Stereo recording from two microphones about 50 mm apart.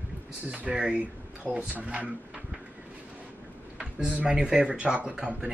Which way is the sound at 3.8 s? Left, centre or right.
Centre.